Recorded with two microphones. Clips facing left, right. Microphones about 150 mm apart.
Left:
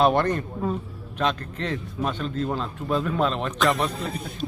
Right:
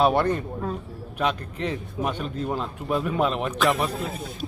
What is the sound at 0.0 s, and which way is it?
A man's voice, 5° right (ahead or behind).